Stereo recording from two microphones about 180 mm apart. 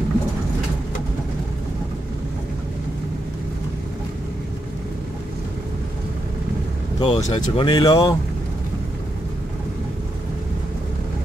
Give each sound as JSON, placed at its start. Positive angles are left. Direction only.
{"t": 7.0, "sound": "speech", "side_deg": 30}